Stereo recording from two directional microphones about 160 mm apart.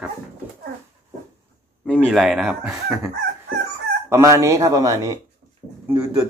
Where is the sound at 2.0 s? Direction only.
Centre (ahead or behind).